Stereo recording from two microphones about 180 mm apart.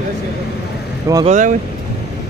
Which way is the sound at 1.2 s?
45° right (ahead or behind).